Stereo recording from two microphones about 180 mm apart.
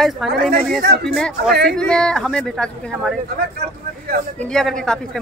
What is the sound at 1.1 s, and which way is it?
A woman's voice, centre (ahead or behind).